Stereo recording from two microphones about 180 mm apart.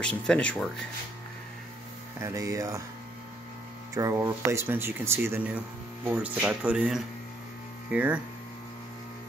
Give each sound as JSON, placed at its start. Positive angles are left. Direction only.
{"t": 0.0, "sound": "speech", "side_deg": 5}
{"t": 2.1, "sound": "speech", "side_deg": -15}
{"t": 3.9, "sound": "speech", "side_deg": -15}